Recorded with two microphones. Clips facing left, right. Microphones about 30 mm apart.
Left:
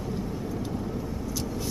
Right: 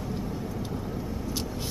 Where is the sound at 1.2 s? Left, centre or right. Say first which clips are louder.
Even; right.